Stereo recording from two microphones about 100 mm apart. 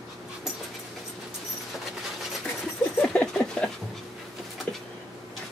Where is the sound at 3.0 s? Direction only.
10° left (ahead or behind).